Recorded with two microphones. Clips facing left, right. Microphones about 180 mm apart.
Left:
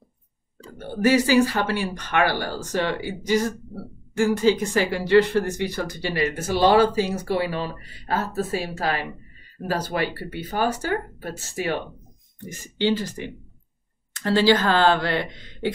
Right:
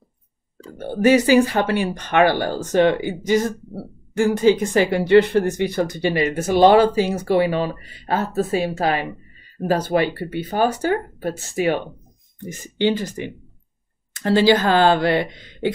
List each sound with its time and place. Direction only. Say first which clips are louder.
0.8 s speech: right 4 dB; 20° right (ahead or behind)